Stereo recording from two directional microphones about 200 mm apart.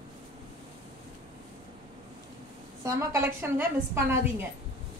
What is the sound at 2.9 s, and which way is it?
A woman's voice, 15° right (ahead or behind).